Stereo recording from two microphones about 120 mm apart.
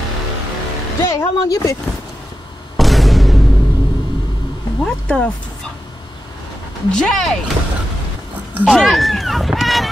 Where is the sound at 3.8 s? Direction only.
40° left (ahead or behind).